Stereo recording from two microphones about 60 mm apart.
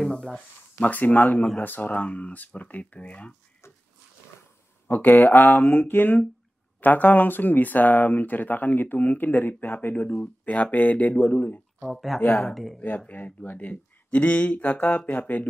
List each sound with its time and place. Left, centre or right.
0.0 s a sound: centre
0.7 s speech: left
4.8 s speech: left
11.9 s speech: centre
12.2 s speech: left